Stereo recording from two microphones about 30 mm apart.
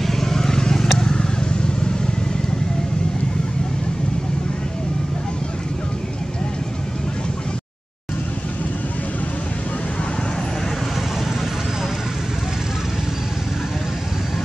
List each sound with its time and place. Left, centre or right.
0.0 s vehicle: centre